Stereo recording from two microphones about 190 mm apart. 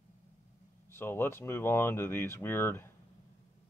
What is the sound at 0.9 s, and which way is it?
Speech, 10° left (ahead or behind).